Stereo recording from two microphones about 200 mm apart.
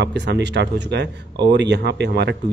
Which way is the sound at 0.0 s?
60° right (ahead or behind).